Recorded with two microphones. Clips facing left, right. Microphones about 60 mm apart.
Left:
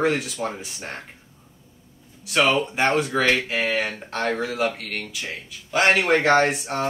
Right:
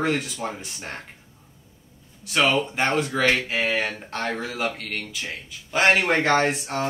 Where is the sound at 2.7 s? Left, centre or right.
Centre.